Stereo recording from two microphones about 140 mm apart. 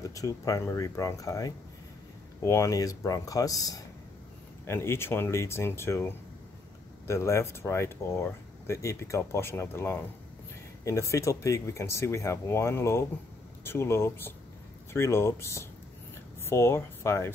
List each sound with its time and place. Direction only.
0.1 s speech: 25° left (ahead or behind)